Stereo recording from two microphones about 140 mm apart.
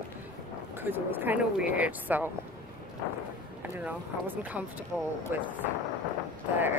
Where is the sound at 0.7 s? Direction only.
15° right (ahead or behind).